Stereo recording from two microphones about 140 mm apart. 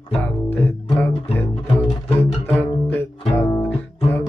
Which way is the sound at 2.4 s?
15° left (ahead or behind).